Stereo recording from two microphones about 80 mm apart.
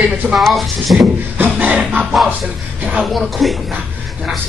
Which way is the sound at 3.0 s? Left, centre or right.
Centre.